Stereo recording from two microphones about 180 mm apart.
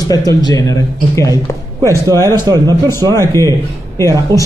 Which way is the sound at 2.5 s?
20° right (ahead or behind).